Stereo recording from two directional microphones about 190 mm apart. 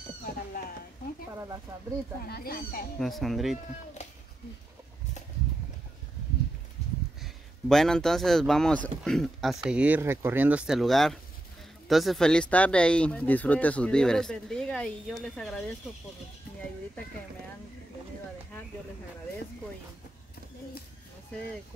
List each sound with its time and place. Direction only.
2.2 s speech: 55° left (ahead or behind)
3.0 s speech: centre (ahead or behind)
4.0 s a sound: 35° left (ahead or behind)
7.2 s speech: centre (ahead or behind)